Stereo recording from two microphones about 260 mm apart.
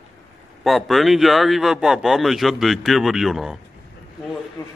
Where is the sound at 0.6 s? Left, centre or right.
Centre.